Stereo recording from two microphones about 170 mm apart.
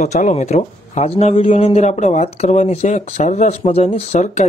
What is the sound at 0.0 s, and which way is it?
A man's voice, 45° left (ahead or behind).